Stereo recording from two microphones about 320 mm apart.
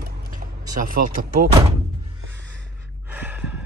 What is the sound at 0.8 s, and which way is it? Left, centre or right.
Speech, right.